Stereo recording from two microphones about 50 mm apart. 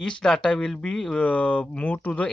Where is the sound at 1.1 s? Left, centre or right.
Left.